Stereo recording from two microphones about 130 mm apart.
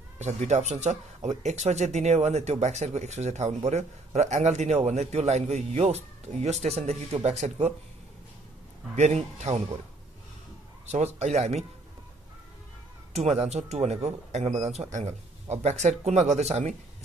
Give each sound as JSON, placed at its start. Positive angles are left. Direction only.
{"t": 0.2, "sound": "speech", "side_deg": -60}
{"t": 8.9, "sound": "speech", "side_deg": -60}
{"t": 10.9, "sound": "speech", "side_deg": -60}
{"t": 13.1, "sound": "speech", "side_deg": -55}